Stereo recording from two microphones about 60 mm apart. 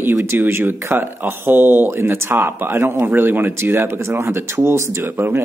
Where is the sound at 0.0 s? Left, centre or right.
Right.